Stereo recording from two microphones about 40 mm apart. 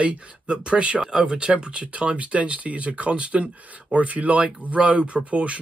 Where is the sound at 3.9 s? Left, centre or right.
Right.